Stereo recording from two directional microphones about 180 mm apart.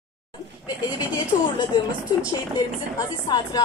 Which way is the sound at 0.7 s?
20° left (ahead or behind).